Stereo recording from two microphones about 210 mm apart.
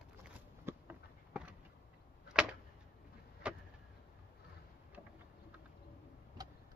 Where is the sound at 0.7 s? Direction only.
10° right (ahead or behind).